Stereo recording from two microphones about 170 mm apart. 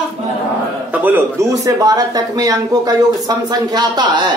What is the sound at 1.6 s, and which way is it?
Speech, 20° right (ahead or behind).